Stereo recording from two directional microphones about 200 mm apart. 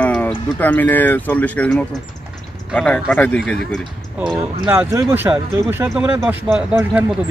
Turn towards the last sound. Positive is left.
turn(degrees=-10)  # may be behind; listen again after turning